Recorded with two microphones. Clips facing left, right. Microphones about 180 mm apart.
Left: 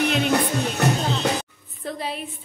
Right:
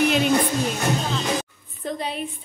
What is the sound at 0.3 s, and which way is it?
Speech, 70° left (ahead or behind).